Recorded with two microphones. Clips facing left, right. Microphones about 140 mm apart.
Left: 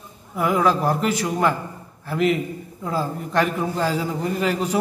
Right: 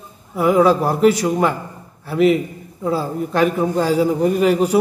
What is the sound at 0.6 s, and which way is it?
A man's voice, 10° right (ahead or behind).